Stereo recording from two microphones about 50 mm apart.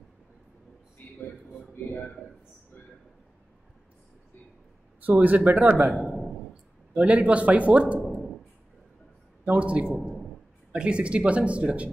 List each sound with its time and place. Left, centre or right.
5.0 s speech: right
5.9 s a sound: centre
6.9 s speech: right
9.4 s speech: right